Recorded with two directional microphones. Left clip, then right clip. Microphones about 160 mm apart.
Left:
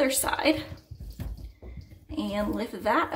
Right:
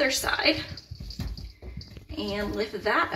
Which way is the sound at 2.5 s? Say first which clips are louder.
Right 1 dB; 80° left.